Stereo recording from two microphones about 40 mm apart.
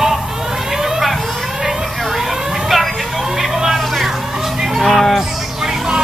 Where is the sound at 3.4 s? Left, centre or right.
Centre.